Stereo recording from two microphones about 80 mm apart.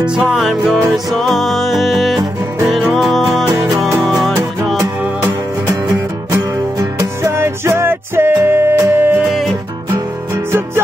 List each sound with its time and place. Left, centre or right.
0.0 s music: centre
0.4 s music: centre
7.2 s music: right